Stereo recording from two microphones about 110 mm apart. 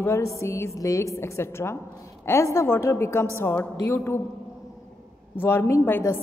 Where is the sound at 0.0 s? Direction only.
25° left (ahead or behind).